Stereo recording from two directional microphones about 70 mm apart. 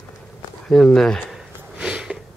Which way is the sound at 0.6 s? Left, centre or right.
Centre.